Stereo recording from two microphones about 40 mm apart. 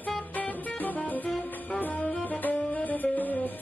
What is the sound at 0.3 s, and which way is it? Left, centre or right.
Music, left.